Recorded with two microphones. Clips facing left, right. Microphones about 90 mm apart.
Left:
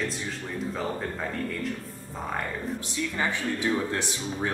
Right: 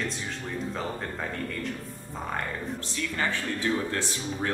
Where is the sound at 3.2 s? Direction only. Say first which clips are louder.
Left 1 dB; 15° left (ahead or behind).